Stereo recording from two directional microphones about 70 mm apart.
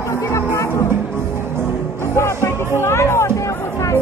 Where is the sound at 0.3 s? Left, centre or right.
Left.